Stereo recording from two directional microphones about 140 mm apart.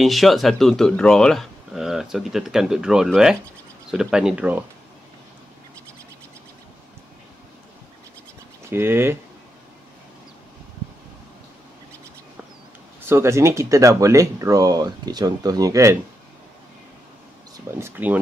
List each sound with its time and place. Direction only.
0.0 s speech: centre (ahead or behind)
8.6 s speech: 15° right (ahead or behind)
13.0 s speech: 20° right (ahead or behind)
17.7 s speech: 15° right (ahead or behind)